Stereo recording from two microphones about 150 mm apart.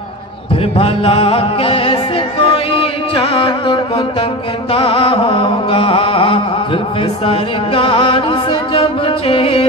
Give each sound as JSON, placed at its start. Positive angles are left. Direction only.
{"t": 0.7, "sound": "music", "side_deg": 40}
{"t": 4.7, "sound": "mantra", "side_deg": 40}